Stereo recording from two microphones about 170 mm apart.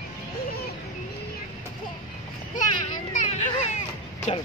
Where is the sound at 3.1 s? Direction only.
45° left (ahead or behind).